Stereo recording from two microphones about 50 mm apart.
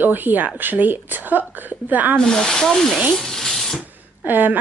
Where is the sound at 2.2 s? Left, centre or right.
Centre.